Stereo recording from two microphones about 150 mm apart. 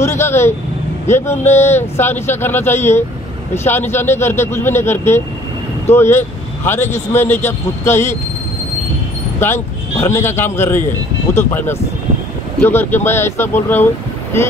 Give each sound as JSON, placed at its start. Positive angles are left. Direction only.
{"t": 0.0, "sound": "speech", "side_deg": 15}
{"t": 9.4, "sound": "speech", "side_deg": 15}